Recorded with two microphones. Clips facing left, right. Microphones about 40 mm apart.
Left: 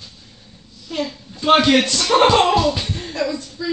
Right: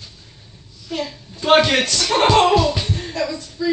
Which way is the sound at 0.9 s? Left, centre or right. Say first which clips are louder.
Left 1 dB; centre.